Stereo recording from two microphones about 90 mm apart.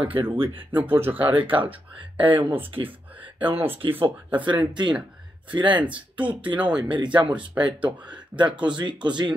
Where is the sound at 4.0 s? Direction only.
70° right (ahead or behind).